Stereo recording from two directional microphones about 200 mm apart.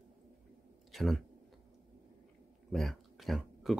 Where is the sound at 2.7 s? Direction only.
Centre (ahead or behind).